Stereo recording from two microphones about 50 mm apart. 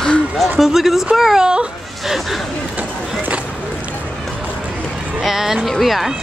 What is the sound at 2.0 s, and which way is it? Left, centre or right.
Speech, centre.